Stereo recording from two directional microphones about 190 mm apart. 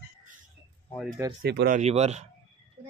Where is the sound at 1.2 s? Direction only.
15° right (ahead or behind).